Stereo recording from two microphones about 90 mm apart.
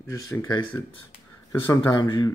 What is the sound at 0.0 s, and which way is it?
Speech, 30° left (ahead or behind).